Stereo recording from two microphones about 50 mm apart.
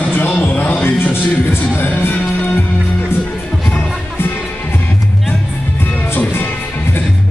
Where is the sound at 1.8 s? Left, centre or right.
Left.